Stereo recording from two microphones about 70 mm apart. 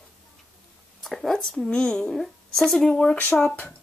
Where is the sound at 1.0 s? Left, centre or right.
Centre.